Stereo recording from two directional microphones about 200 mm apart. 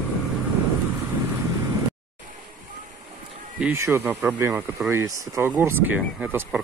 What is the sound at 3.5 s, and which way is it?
Speech, 10° right (ahead or behind).